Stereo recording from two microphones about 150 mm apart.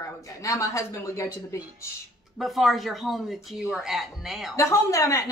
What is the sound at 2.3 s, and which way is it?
Speech, centre (ahead or behind).